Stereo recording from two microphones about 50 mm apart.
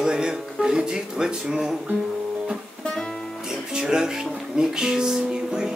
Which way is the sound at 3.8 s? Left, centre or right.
Centre.